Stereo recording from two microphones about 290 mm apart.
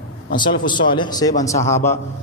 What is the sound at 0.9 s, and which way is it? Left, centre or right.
A man's voice, centre.